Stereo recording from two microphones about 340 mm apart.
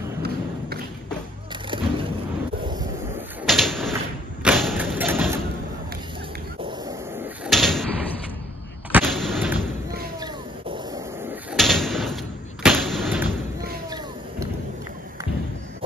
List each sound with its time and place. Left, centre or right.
1.7 s music: centre
2.7 s wind noise: centre
3.4 s sliding door: centre
4.4 s thump: centre
6.8 s door: centre
8.9 s artillery fire: centre
10.1 s a sound: centre
11.5 s door: centre
12.6 s artillery fire: centre
13.8 s a sound: centre